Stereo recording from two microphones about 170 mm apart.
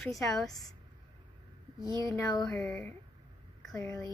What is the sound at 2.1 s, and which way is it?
Speech, 20° left (ahead or behind).